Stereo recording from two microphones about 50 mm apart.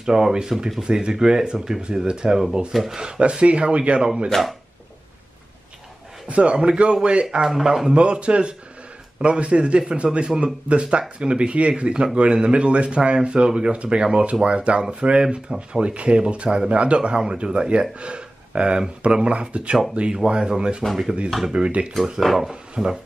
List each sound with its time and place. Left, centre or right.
0.0 s speech: centre
2.7 s speech: centre
3.0 s speech: centre
4.3 s speech: centre
6.2 s speech: right
7.2 s speech: centre
7.9 s speech: right
22.2 s speech: centre
22.5 s speech: centre